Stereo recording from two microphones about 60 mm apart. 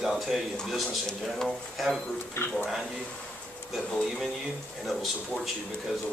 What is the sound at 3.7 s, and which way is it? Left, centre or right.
Speech, centre.